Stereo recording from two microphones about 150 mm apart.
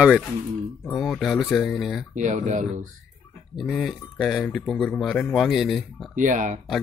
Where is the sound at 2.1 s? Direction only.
55° right (ahead or behind).